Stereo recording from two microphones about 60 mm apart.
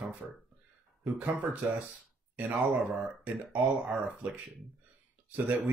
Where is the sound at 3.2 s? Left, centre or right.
Right.